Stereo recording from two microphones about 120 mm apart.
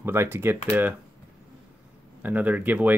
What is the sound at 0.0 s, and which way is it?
Speech, 20° right (ahead or behind).